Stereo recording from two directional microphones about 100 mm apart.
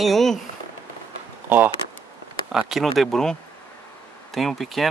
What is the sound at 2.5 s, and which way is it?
Speech, 5° right (ahead or behind).